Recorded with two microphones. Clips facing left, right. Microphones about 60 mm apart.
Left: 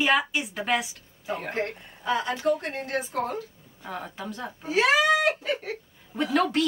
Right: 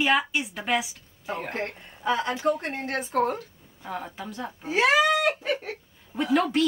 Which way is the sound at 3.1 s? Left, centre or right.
Right.